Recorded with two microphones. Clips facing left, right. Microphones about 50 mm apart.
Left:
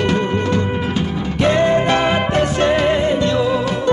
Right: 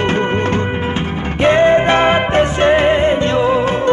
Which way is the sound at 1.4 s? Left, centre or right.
Right.